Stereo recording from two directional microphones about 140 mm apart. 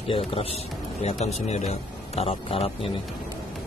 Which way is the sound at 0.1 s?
40° left (ahead or behind).